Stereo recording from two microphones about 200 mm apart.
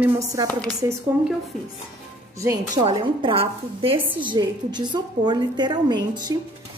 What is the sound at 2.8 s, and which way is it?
A woman's voice, 30° right (ahead or behind).